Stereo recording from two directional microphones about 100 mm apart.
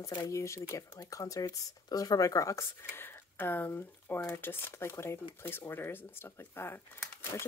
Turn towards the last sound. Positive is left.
turn(degrees=25)  # may be behind; listen again after turning